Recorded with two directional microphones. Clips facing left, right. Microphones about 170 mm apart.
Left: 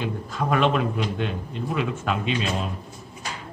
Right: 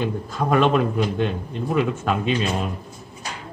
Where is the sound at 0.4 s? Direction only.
40° right (ahead or behind).